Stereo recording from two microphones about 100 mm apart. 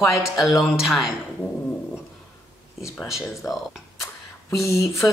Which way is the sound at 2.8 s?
5° right (ahead or behind).